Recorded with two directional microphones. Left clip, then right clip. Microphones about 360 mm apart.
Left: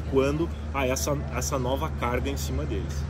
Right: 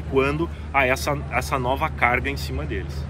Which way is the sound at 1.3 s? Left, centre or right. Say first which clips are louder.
Right 5 dB; centre.